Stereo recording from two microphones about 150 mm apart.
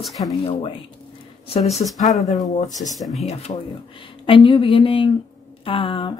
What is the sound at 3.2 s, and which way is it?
Speech, 50° left (ahead or behind).